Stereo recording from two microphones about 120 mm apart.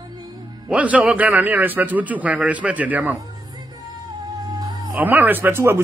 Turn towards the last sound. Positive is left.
turn(degrees=-20)  # may be behind; listen again after turning